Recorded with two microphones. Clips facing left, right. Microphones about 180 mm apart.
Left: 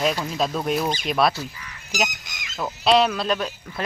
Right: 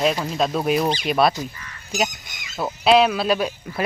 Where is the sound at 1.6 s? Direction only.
Centre (ahead or behind).